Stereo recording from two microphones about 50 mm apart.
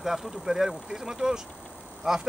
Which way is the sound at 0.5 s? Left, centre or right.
Right.